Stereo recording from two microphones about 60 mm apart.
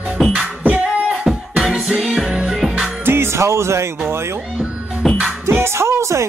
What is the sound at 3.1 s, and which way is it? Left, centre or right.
Music, right.